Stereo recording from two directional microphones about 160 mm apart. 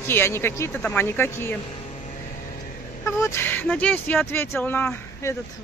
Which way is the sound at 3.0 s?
15° left (ahead or behind).